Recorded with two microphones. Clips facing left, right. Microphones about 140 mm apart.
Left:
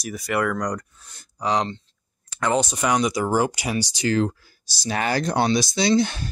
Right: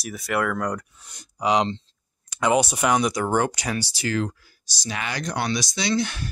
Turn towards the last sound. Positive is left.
turn(degrees=25)  # may be behind; listen again after turning